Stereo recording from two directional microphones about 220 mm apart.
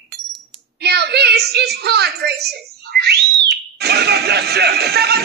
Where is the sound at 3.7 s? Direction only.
45° right (ahead or behind).